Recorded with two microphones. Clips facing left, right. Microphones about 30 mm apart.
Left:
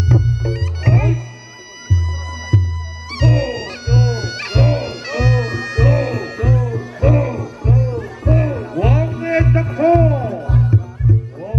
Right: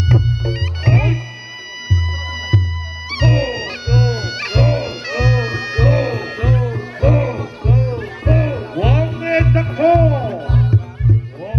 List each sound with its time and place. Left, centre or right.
0.0 s music: right
7.1 s music: right
7.3 s music: right